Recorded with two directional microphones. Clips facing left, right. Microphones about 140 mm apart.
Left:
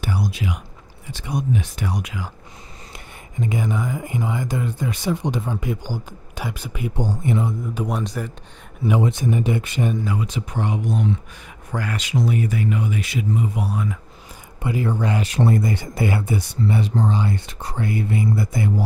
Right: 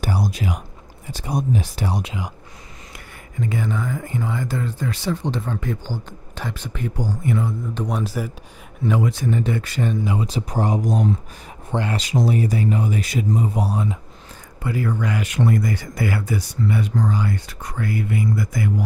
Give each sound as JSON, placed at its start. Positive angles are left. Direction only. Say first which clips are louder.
{"t": 0.0, "sound": "a sound", "louder": "right 1 dB", "side_deg": -40}
{"t": 1.1, "sound": "speech", "louder": "right 1 dB", "side_deg": -35}
{"t": 3.3, "sound": "speech", "louder": "left 1 dB", "side_deg": 15}
{"t": 7.0, "sound": "speech", "louder": "left 1 dB", "side_deg": 25}
{"t": 7.7, "sound": "speech", "louder": "even", "side_deg": 5}
{"t": 8.0, "sound": "speech", "louder": "right 2 dB", "side_deg": -5}
{"t": 8.8, "sound": "speech", "louder": "left 1 dB", "side_deg": 20}
{"t": 10.0, "sound": "speech", "louder": "right 2 dB", "side_deg": -30}
{"t": 11.7, "sound": "speech", "louder": "right 2 dB", "side_deg": -25}
{"t": 14.6, "sound": "speech", "louder": "left 1 dB", "side_deg": 20}